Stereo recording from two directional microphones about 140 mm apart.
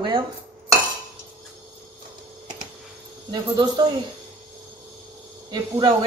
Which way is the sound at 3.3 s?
30° right (ahead or behind).